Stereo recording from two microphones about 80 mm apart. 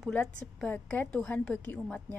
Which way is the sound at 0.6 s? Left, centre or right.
Left.